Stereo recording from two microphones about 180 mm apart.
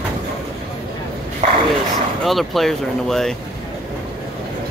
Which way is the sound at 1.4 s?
45° right (ahead or behind).